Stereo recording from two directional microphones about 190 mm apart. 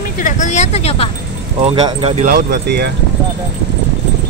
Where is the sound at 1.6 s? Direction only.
30° right (ahead or behind).